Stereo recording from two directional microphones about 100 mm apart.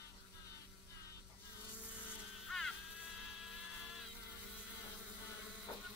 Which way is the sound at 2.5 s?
5° left (ahead or behind).